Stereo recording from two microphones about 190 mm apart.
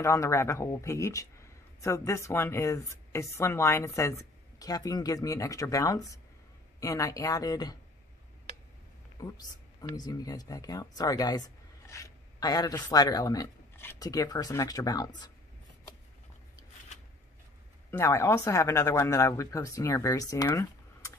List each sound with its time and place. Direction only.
0.0 s a man's voice: 15° left (ahead or behind)
9.2 s speech: 20° left (ahead or behind)
17.9 s a man's voice: 15° left (ahead or behind)